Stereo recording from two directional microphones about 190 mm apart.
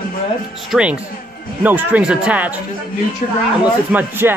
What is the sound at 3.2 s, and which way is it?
Speech, 40° left (ahead or behind).